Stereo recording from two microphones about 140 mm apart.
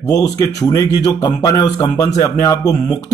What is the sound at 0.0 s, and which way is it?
Speech, 25° left (ahead or behind).